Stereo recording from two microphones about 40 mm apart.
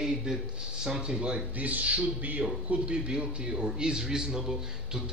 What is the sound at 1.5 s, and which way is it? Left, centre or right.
Speech, right.